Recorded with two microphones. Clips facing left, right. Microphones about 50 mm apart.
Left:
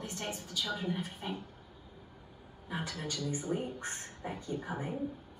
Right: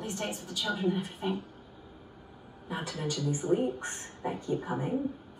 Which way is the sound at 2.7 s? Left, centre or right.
Right.